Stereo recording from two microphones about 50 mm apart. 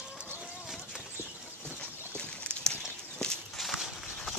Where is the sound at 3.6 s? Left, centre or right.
Centre.